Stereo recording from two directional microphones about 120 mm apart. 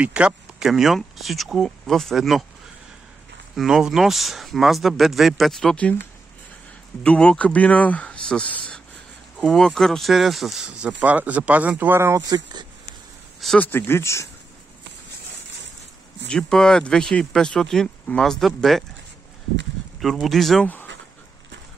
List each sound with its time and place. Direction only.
0.0 s speech: 10° right (ahead or behind)
3.5 s speech: 5° right (ahead or behind)
7.0 s speech: 10° left (ahead or behind); by 12.6 s 30° right (ahead or behind)
13.6 s speech: 20° left (ahead or behind)
16.3 s speech: 5° left (ahead or behind)
20.0 s speech: centre (ahead or behind)
20.6 s dog: 15° left (ahead or behind)